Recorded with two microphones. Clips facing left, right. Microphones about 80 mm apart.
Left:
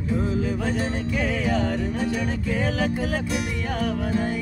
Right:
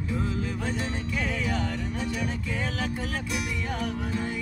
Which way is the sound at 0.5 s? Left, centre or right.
Left.